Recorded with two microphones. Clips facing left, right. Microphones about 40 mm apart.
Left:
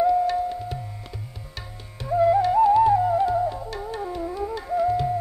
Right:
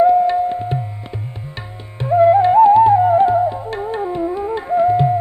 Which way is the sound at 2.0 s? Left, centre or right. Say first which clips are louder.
Right 8 dB; right.